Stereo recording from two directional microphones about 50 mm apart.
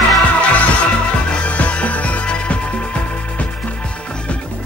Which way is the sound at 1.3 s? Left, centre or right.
Left.